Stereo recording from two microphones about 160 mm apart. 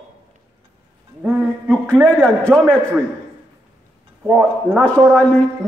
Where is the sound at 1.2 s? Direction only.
5° right (ahead or behind).